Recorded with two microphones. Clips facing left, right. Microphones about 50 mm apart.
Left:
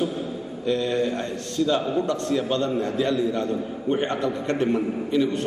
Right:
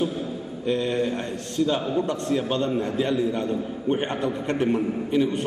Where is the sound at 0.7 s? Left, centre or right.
Right.